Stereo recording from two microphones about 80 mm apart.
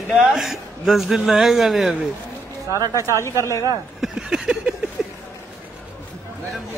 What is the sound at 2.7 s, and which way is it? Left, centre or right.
Speech, right.